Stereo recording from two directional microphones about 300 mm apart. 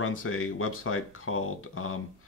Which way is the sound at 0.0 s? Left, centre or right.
Left.